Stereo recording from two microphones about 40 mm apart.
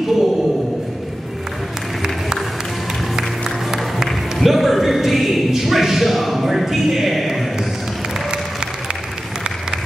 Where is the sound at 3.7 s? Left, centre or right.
Centre.